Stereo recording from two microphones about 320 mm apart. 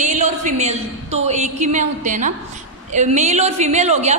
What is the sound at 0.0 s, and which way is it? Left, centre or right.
A woman's voice, right.